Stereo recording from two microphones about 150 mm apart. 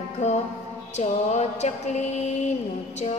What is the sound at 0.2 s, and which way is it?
Music, 50° left (ahead or behind).